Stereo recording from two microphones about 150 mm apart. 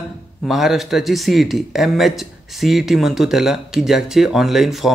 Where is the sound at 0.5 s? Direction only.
Centre (ahead or behind).